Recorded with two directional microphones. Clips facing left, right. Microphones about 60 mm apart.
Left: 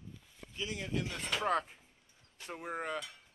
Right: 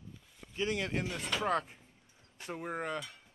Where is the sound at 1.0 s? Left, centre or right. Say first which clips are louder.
Right 1 dB; centre.